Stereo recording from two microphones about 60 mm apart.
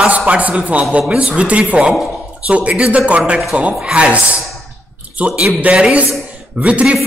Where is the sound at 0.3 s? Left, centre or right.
Right.